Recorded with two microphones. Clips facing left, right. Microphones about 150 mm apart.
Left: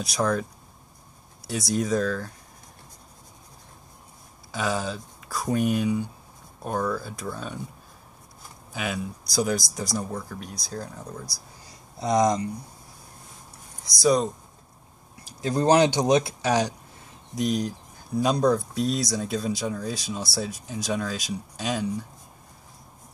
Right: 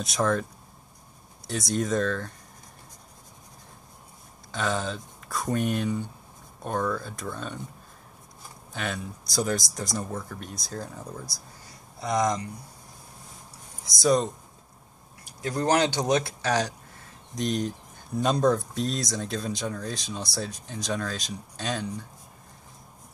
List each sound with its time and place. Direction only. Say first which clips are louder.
0.0 s speech: even; centre (ahead or behind)
1.5 s speech: left 2 dB; 5° left (ahead or behind)
4.5 s speech: left 1 dB; 5° left (ahead or behind)
8.7 s speech: left 2 dB; 5° left (ahead or behind)
12.0 s speech: left 4 dB; 20° left (ahead or behind)
13.8 s speech: left 1 dB; centre (ahead or behind)
15.4 s speech: left 4 dB; 20° left (ahead or behind)
17.4 s speech: left 2 dB; centre (ahead or behind)